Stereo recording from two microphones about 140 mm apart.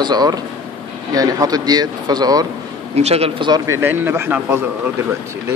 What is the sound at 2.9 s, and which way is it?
Speech, 50° right (ahead or behind).